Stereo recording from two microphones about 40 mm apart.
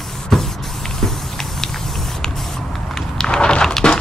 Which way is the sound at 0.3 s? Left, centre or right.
Centre.